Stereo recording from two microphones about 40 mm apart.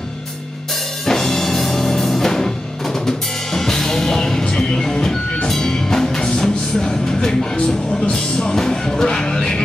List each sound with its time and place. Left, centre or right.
1.0 s music: centre